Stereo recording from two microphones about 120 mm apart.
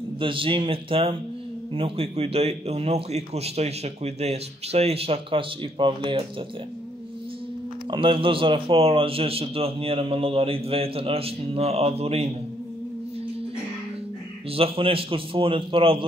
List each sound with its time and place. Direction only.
0.2 s a man's voice: 45° right (ahead or behind)
7.9 s a man's voice: 45° right (ahead or behind)
14.5 s a man's voice: 50° right (ahead or behind)